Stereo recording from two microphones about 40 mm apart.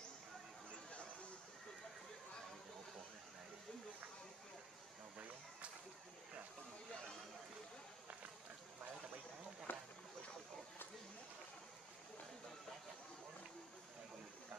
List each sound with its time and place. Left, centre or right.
9.7 s boat: left